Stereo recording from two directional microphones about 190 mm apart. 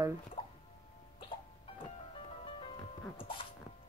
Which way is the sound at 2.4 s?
30° left (ahead or behind).